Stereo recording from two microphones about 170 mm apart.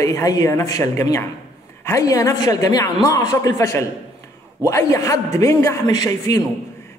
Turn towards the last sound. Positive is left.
turn(degrees=20)  # may be behind; listen again after turning